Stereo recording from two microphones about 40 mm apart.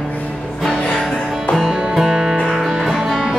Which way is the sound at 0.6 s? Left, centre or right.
Centre.